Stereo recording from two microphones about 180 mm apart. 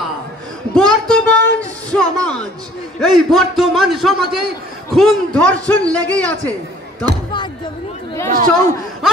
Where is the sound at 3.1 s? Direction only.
Centre (ahead or behind).